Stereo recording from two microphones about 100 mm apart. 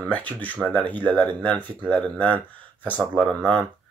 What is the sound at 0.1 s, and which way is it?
Speech, 15° left (ahead or behind).